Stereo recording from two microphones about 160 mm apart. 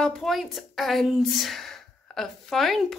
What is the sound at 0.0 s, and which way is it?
A woman's voice, centre (ahead or behind).